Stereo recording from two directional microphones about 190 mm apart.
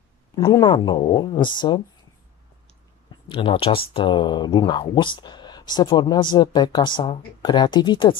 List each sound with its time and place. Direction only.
0.4 s speech: 25° left (ahead or behind)
3.3 s speech: 25° left (ahead or behind)